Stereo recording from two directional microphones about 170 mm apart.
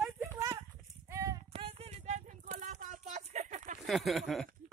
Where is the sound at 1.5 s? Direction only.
35° right (ahead or behind).